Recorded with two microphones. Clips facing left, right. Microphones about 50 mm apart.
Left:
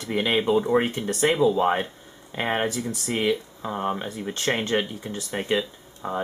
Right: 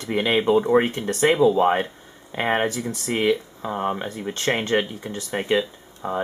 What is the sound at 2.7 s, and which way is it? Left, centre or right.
Speech, centre.